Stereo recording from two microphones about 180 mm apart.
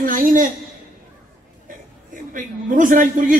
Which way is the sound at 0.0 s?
50° right (ahead or behind).